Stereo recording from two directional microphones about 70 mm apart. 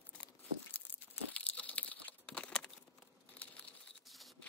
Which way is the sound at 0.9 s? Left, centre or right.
Left.